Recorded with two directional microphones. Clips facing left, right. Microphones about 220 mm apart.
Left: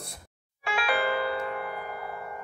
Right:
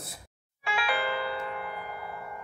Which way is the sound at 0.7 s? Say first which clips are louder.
Left 3 dB; 45° left (ahead or behind).